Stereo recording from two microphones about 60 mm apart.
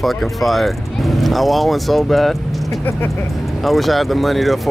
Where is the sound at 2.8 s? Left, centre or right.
Left.